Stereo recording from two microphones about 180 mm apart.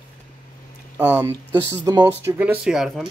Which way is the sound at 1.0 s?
10° right (ahead or behind).